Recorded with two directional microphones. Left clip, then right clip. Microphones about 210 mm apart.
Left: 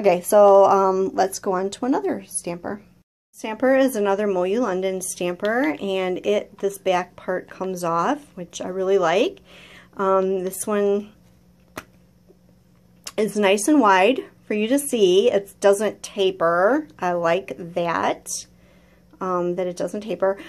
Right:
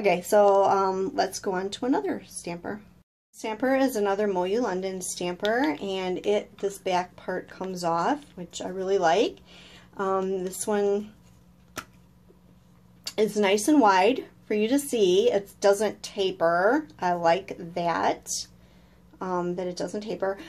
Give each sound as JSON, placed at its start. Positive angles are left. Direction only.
{"t": 0.0, "sound": "a woman's voice", "side_deg": 25}
{"t": 13.0, "sound": "a woman's voice", "side_deg": 25}